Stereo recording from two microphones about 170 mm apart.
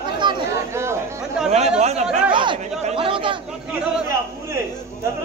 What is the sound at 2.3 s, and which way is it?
Chatter, 30° right (ahead or behind).